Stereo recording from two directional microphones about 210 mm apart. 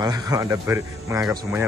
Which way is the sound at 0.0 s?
20° right (ahead or behind).